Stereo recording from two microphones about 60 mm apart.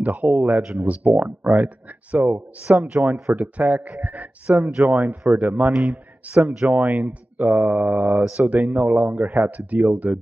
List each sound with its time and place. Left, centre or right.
0.0 s speech: right
0.6 s a man's voice: centre
0.8 s speech: right
5.7 s a man's voice: centre
6.7 s speech: right